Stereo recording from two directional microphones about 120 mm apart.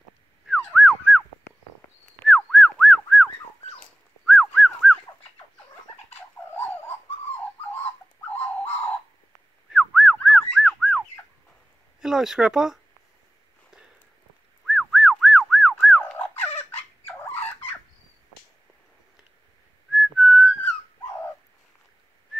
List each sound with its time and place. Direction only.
0.7 s a sound: 5° right (ahead or behind)
2.2 s a sound: centre (ahead or behind)
4.3 s dog: 5° right (ahead or behind)
8.4 s bird: 15° left (ahead or behind)
9.7 s whistling: 5° right (ahead or behind)
10.2 s fowl: 5° right (ahead or behind)
12.0 s speech: 5° right (ahead or behind)
14.7 s whistling: 5° right (ahead or behind)
16.0 s a sound: 10° left (ahead or behind)
17.0 s fowl: 15° left (ahead or behind)
19.9 s whistling: 5° right (ahead or behind)